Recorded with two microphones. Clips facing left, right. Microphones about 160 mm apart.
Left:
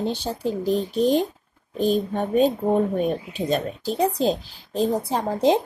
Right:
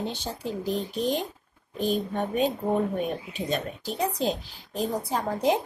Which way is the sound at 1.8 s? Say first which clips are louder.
Left 5 dB; 35° left (ahead or behind).